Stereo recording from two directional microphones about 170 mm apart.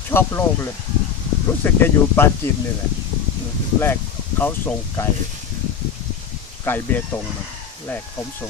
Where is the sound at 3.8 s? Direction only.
15° left (ahead or behind).